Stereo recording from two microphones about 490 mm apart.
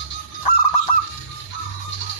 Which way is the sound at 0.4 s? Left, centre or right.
Left.